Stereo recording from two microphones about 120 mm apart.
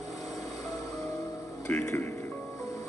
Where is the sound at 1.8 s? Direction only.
25° left (ahead or behind).